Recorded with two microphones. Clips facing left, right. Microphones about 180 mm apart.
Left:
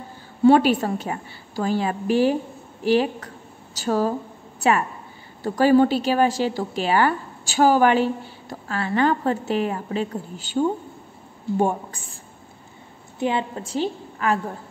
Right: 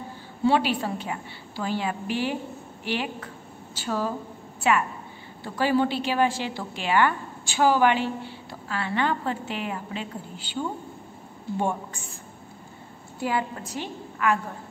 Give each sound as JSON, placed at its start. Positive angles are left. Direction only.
{"t": 0.5, "sound": "a woman's voice", "side_deg": 45}
{"t": 5.4, "sound": "a woman's voice", "side_deg": 45}
{"t": 13.2, "sound": "a woman's voice", "side_deg": 25}